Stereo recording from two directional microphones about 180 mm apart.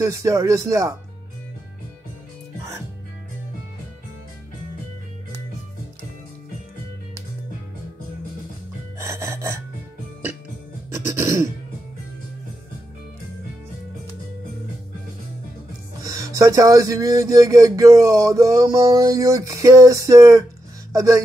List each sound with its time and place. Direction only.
0.0 s speech: 15° right (ahead or behind)
8.9 s gasp: 15° right (ahead or behind)
10.9 s music: 15° right (ahead or behind)
16.0 s speech: 20° right (ahead or behind)